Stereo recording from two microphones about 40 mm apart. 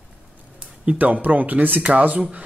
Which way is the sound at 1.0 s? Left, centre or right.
Right.